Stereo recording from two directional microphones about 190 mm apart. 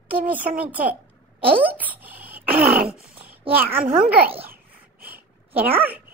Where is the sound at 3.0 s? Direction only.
10° right (ahead or behind).